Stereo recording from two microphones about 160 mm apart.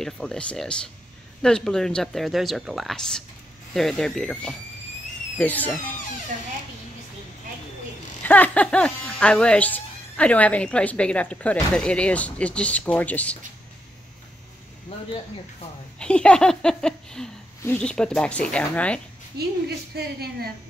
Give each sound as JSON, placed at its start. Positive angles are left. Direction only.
{"t": 0.0, "sound": "speech", "side_deg": 5}
{"t": 8.2, "sound": "speech", "side_deg": 10}
{"t": 16.0, "sound": "speech", "side_deg": 5}
{"t": 19.3, "sound": "a woman's voice", "side_deg": -85}